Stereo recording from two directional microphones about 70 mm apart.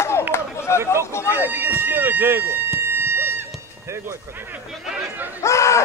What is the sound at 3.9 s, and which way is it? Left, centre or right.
Speech, right.